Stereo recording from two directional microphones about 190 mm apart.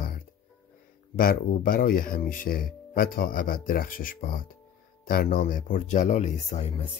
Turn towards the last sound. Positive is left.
turn(degrees=35)  # may be behind; listen again after turning